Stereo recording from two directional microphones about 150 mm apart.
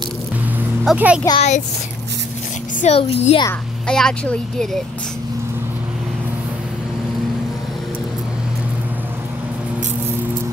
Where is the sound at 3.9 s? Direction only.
5° left (ahead or behind).